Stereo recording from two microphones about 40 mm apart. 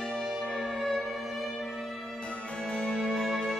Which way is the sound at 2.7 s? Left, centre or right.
Left.